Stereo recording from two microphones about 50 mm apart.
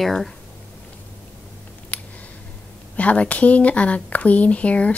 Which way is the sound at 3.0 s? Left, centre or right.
Left.